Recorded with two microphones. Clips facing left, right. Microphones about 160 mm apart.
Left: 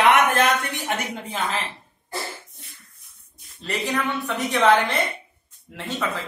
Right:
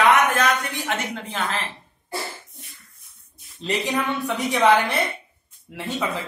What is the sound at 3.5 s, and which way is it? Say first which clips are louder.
Speech: right 2 dB; 15° right (ahead or behind).